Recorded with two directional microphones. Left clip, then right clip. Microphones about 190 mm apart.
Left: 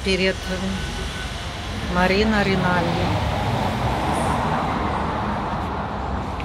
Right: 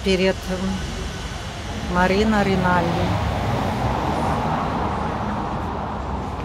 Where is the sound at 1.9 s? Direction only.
5° right (ahead or behind).